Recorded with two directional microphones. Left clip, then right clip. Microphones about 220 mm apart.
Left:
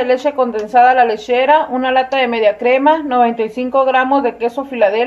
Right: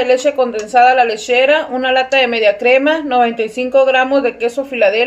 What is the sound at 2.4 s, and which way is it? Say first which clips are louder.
Speech: right 1 dB; 20° left (ahead or behind).